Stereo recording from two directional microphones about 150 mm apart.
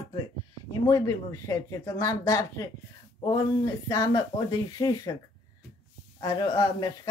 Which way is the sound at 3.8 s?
25° left (ahead or behind).